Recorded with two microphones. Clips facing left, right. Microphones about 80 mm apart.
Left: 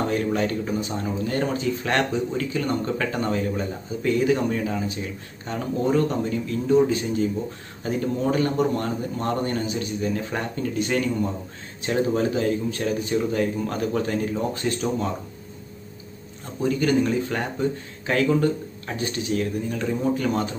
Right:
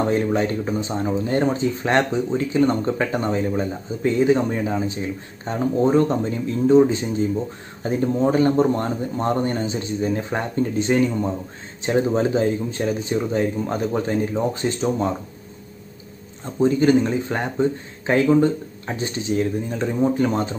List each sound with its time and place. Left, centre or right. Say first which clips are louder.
0.1 s speech: right 3 dB; right
16.6 s speech: right 4 dB; right